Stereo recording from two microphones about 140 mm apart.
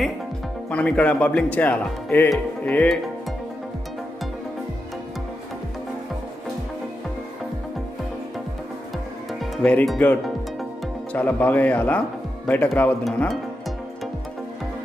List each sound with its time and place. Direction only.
0.7 s speech: 10° left (ahead or behind)
9.6 s speech: 10° left (ahead or behind)
9.8 s music: 5° left (ahead or behind)
11.1 s speech: 10° left (ahead or behind)